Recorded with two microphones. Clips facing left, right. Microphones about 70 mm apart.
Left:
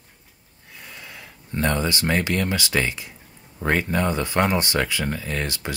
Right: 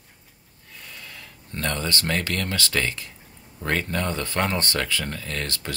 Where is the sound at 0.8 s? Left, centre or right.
Centre.